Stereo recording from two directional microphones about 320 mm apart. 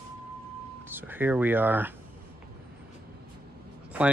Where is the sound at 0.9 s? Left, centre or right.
Centre.